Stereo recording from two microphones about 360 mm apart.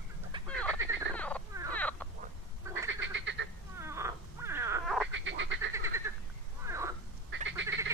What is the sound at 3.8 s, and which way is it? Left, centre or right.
Cat, centre.